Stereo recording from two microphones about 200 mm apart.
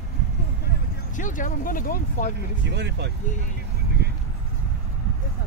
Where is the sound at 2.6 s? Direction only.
60° right (ahead or behind).